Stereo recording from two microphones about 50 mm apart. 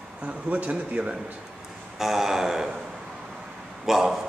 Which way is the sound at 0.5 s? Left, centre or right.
Right.